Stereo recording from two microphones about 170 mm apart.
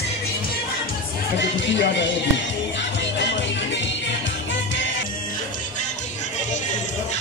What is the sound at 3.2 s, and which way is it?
Music, 90° left.